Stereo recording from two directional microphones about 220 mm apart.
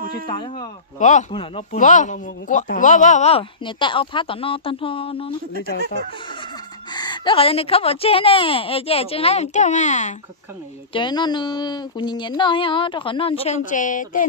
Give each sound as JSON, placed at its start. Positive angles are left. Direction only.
{"t": 0.3, "sound": "speech", "side_deg": 20}
{"t": 0.9, "sound": "speech", "side_deg": 35}
{"t": 6.9, "sound": "speech", "side_deg": 20}
{"t": 10.9, "sound": "speech", "side_deg": 20}